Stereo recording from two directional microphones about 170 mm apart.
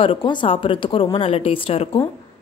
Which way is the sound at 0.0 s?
30° left (ahead or behind).